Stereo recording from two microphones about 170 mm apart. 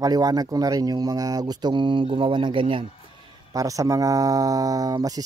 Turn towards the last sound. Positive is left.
turn(degrees=-20)  # may be behind; listen again after turning